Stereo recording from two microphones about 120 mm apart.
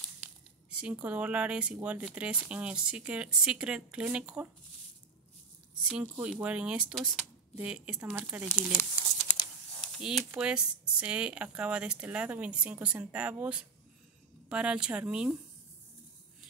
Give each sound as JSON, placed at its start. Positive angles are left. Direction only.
{"t": 0.7, "sound": "speech", "side_deg": -10}
{"t": 5.9, "sound": "speech", "side_deg": -5}
{"t": 9.8, "sound": "speech", "side_deg": 0}